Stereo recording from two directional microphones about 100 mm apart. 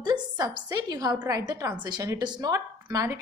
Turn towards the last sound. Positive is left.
turn(degrees=-40)  # may be behind; listen again after turning